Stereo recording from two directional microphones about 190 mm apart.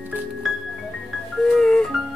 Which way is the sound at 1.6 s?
Centre (ahead or behind).